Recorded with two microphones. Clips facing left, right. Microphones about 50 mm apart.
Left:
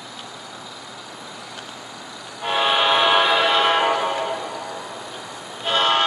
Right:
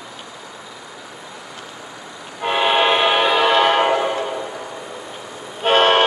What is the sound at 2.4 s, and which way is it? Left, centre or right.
Train, right.